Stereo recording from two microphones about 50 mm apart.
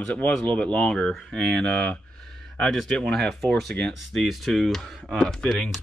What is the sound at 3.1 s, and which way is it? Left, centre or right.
Speech, centre.